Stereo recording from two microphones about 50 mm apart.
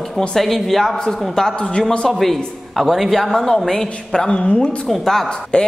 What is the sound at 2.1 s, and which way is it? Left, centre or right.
A man's voice, centre.